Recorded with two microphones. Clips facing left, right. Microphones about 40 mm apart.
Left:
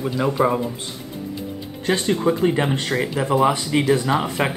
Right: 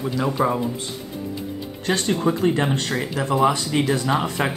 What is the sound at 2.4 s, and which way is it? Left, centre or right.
Speech, centre.